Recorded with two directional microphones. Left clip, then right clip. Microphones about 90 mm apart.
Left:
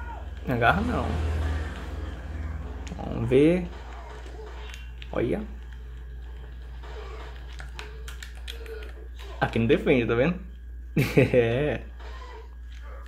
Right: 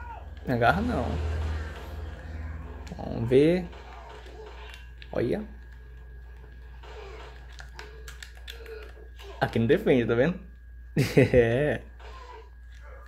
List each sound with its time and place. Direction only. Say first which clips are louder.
0.5 s speech: left 1 dB; 45° right (ahead or behind)
3.0 s speech: left 1 dB; 45° right (ahead or behind)
5.1 s speech: left 1 dB; 40° right (ahead or behind)
9.4 s speech: left 1 dB; 45° right (ahead or behind)